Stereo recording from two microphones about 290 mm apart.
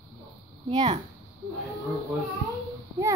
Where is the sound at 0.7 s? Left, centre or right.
Right.